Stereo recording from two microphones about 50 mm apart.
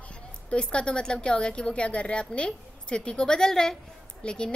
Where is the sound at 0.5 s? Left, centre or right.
Left.